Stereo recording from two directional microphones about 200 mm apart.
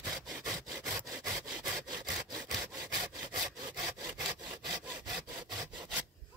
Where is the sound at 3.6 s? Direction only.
20° right (ahead or behind).